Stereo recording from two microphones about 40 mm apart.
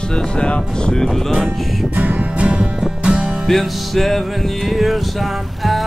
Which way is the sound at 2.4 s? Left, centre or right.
Right.